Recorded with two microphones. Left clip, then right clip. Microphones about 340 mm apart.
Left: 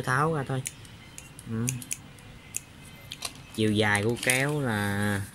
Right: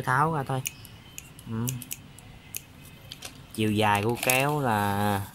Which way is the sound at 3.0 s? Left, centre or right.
Centre.